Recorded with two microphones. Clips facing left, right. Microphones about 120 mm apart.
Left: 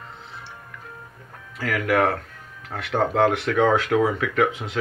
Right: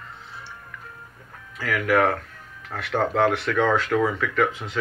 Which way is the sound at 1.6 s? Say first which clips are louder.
Even; 45° left (ahead or behind).